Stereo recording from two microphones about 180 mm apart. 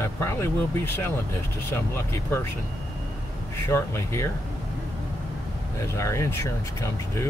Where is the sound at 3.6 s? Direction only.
15° left (ahead or behind).